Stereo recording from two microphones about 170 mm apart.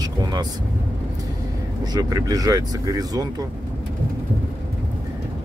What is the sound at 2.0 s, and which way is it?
Speech, 20° right (ahead or behind).